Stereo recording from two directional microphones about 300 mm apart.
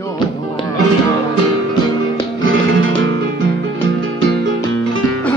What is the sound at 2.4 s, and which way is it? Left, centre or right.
Music, right.